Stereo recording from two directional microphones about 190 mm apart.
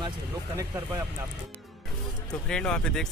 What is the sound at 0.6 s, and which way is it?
Speech, 15° right (ahead or behind).